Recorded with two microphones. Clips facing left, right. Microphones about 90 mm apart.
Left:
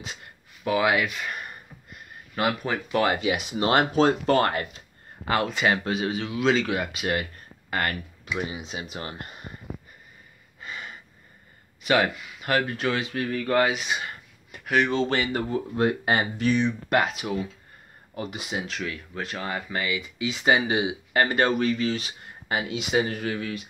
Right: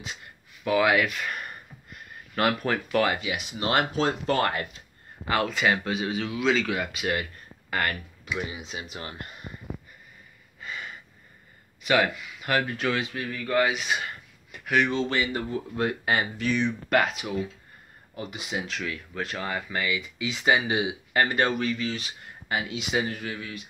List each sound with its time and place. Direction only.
0.7 s speech: 20° left (ahead or behind); by 4.6 s 35° left (ahead or behind)
5.3 s speech: 25° left (ahead or behind)
10.6 s a sound: 25° left (ahead or behind)
11.8 s speech: 30° left (ahead or behind)
13.1 s speech: 45° left (ahead or behind)
13.7 s speech: 20° left (ahead or behind)
14.5 s a sound: 30° left (ahead or behind)
15.0 s speech: 40° left (ahead or behind)
16.9 s speech: 15° left (ahead or behind)
18.1 s speech: 30° left (ahead or behind); by 23.5 s 50° left (ahead or behind)